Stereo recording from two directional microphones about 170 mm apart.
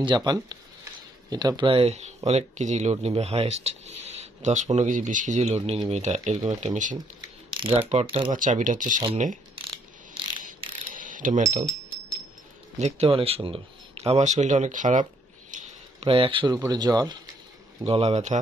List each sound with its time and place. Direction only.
0.0 s speech: 25° right (ahead or behind); by 7.0 s 45° right (ahead or behind)
7.2 s ratchet: 30° right (ahead or behind)
7.9 s speech: 35° right (ahead or behind)
8.3 s speech: 50° right (ahead or behind)
10.9 s pulleys: 50° right (ahead or behind)
11.5 s a sound: 40° right (ahead or behind)
12.7 s speech: 40° right (ahead or behind)
15.5 s a sound: 50° right (ahead or behind)
16.0 s speech: 30° right (ahead or behind)
17.8 s speech: 35° right (ahead or behind)